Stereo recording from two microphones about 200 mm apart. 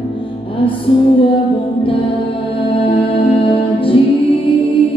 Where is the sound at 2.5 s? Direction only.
25° left (ahead or behind).